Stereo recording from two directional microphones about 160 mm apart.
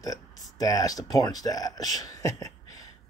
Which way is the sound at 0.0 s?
20° left (ahead or behind).